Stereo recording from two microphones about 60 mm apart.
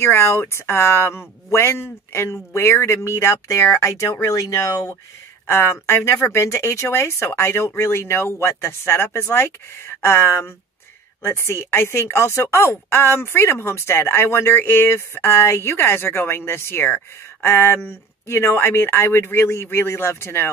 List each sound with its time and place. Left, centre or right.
0.0 s speech: left
5.5 s speech: left